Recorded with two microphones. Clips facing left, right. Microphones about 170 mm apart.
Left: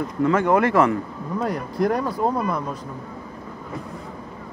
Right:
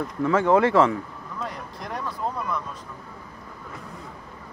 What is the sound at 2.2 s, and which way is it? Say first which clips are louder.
Speech: left 7 dB; 90° left.